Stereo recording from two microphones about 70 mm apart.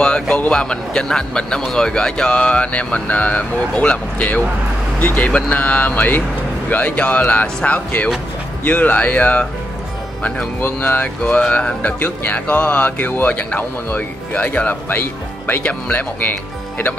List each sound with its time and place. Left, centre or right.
0.0 s speech: centre
10.6 s speech: left